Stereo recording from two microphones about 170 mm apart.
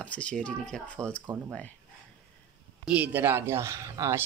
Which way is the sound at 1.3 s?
20° right (ahead or behind).